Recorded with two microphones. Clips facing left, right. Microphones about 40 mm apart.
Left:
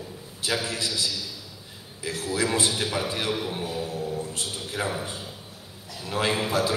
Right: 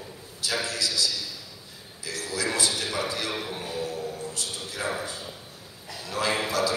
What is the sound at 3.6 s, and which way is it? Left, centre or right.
Music, left.